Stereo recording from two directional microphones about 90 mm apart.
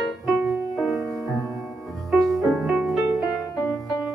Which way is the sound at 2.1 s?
Centre (ahead or behind).